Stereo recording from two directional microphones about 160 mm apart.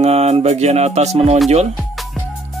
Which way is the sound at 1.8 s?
10° right (ahead or behind).